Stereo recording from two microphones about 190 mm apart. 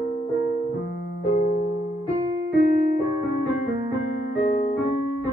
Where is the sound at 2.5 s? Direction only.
50° left (ahead or behind).